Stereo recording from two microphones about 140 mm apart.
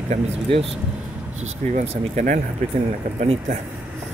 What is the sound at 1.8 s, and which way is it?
Speech, 65° right (ahead or behind).